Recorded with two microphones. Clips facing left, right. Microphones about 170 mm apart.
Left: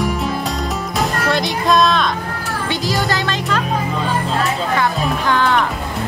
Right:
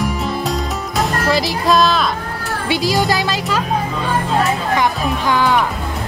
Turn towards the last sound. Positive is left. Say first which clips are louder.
# right 1 dB
turn(degrees=-15)  # may be behind; listen again after turning